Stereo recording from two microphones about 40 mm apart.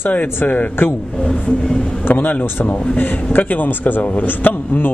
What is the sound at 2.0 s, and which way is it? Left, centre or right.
A man's voice, left.